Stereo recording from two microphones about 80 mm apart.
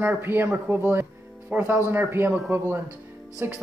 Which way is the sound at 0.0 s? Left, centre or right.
Right.